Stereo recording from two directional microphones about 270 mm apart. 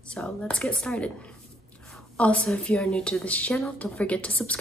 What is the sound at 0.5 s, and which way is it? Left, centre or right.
Speech, centre.